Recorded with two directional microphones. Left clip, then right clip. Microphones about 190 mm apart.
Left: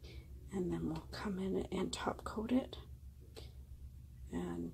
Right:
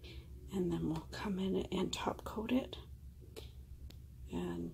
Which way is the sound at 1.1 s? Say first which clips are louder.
Right 2 dB; centre (ahead or behind).